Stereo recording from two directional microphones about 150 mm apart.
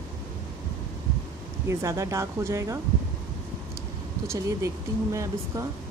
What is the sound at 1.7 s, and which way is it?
Speech, 20° right (ahead or behind).